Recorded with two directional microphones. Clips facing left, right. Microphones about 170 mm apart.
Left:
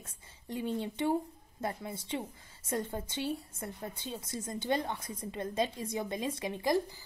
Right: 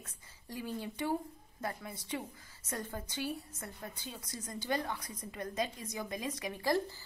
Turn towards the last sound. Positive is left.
turn(degrees=15)  # may be behind; listen again after turning